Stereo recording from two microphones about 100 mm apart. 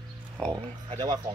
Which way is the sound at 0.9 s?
45° right (ahead or behind).